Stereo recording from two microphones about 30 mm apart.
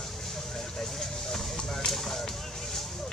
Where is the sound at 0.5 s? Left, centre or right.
Centre.